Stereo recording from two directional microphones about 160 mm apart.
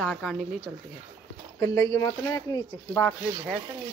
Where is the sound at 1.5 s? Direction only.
20° left (ahead or behind).